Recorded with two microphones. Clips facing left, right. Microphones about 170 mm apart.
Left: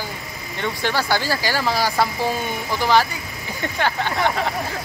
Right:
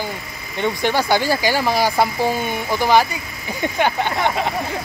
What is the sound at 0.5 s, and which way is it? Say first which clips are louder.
Speech: right 4 dB; 15° right (ahead or behind).